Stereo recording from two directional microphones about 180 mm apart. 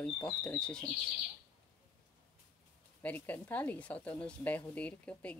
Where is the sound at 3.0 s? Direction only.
10° left (ahead or behind).